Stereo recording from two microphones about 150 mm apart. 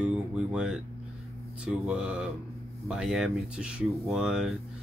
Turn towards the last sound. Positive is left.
turn(degrees=-5)  # may be behind; listen again after turning